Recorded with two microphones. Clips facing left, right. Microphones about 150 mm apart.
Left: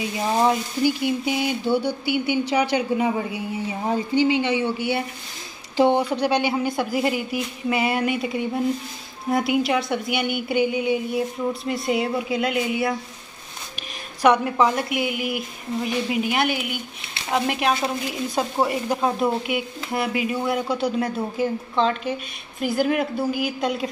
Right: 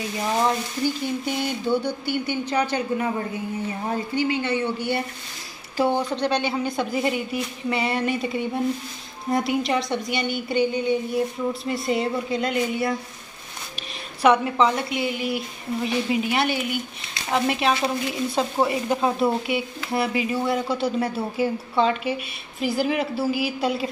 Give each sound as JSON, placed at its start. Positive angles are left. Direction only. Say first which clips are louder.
{"t": 0.4, "sound": "speech", "louder": "left 4 dB", "side_deg": 15}
{"t": 4.7, "sound": "speech", "louder": "left 1 dB", "side_deg": 5}
{"t": 5.8, "sound": "speech", "louder": "left 3 dB", "side_deg": 15}
{"t": 14.2, "sound": "speech", "louder": "even", "side_deg": 0}